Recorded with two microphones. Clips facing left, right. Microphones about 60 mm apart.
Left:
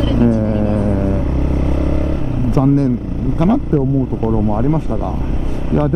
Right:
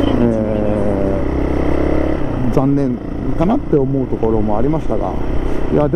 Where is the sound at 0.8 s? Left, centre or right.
Right.